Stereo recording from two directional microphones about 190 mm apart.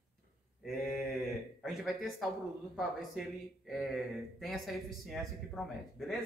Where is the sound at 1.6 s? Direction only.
Centre (ahead or behind).